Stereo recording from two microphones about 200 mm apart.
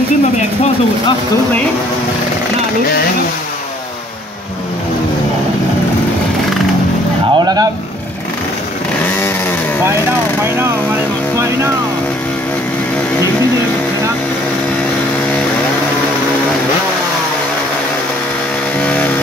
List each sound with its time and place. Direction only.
7.3 s vehicle: 20° right (ahead or behind)
18.8 s chainsaw: 5° left (ahead or behind)